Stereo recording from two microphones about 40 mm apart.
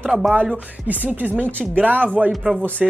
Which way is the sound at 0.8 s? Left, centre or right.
Right.